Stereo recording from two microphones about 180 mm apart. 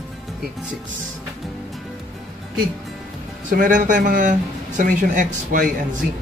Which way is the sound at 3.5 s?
50° right (ahead or behind).